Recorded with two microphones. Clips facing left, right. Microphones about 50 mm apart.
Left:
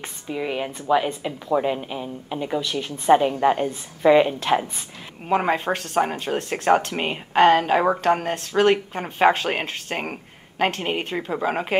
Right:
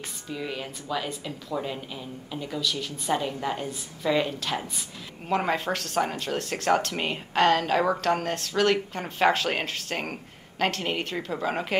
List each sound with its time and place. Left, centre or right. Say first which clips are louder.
0.3 s speech: left 7 dB; left